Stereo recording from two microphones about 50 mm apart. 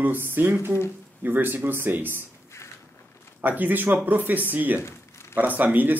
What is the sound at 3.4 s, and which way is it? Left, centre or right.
Speech, right.